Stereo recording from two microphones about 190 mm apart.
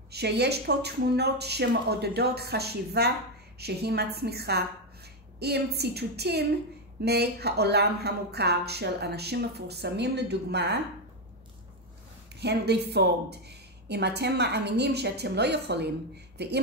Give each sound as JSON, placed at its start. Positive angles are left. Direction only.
{"t": 0.1, "sound": "speech", "side_deg": -60}
{"t": 12.4, "sound": "speech", "side_deg": -60}